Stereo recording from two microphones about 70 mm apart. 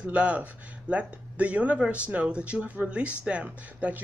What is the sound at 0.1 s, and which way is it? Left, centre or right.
Speech, centre.